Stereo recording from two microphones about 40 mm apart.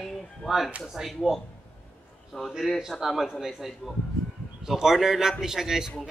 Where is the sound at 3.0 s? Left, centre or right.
Centre.